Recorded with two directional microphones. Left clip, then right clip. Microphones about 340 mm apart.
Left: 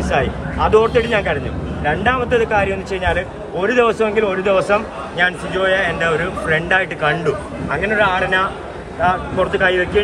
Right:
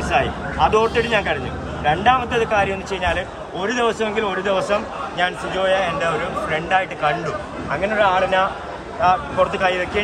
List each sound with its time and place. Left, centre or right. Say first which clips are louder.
0.1 s a man's voice: left 1 dB; centre